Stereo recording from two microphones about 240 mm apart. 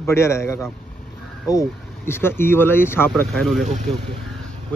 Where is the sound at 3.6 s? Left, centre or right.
Right.